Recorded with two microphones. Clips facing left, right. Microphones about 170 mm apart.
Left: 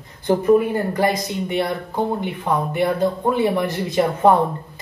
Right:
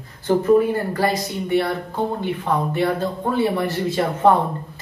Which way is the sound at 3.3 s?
15° left (ahead or behind).